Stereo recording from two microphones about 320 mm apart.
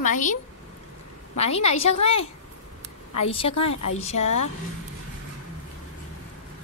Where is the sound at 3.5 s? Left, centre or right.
Left.